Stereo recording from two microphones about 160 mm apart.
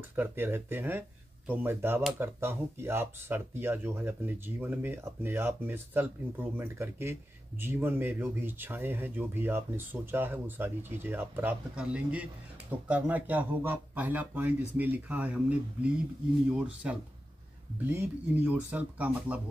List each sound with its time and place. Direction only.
0.1 s speech: 15° right (ahead or behind)
16.5 s speech: 5° right (ahead or behind)